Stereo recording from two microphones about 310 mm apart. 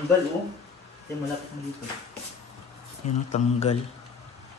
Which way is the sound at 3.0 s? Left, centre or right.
Left.